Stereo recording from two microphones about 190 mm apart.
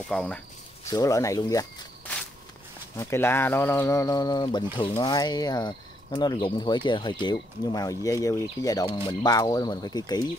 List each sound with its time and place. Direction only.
0.1 s speech: 5° left (ahead or behind)
0.8 s speech: 15° left (ahead or behind)
3.0 s speech: 15° left (ahead or behind)